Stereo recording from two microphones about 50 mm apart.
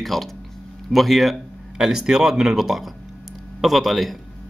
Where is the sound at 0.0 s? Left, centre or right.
Centre.